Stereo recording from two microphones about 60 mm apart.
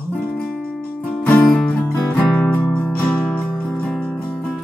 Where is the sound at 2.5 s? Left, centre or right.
Left.